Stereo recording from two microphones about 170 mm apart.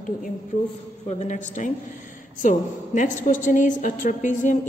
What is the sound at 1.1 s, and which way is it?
A woman's voice, 45° left (ahead or behind).